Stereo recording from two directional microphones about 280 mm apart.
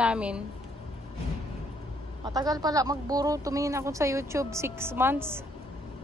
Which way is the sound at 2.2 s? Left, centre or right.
Centre.